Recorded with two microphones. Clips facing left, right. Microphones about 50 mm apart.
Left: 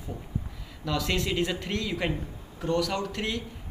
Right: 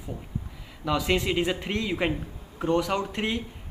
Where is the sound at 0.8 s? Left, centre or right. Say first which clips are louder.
Right 4 dB; centre.